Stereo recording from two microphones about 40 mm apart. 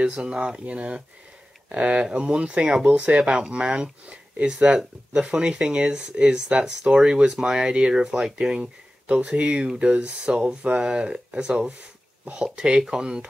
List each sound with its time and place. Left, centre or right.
0.0 s speech: right
0.4 s speech: right
8.4 s speech: centre
9.0 s speech: right